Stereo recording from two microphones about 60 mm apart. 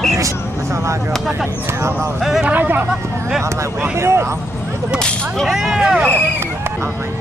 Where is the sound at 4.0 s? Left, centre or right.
Right.